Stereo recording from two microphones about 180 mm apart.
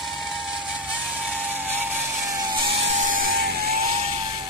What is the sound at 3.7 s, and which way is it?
Music, 35° right (ahead or behind).